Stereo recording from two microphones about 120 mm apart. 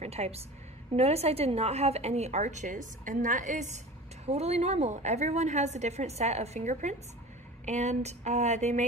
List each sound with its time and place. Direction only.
0.0 s a woman's voice: 60° right (ahead or behind); by 3.8 s 90° right
4.3 s a woman's voice: 65° right (ahead or behind)